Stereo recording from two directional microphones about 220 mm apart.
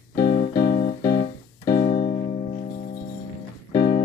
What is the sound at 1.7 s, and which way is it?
Keyboard, 20° left (ahead or behind).